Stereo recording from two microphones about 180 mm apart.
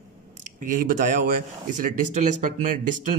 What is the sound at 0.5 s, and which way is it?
A man's voice, 45° right (ahead or behind).